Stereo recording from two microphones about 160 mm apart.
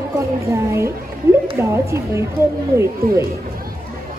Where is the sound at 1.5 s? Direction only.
20° right (ahead or behind).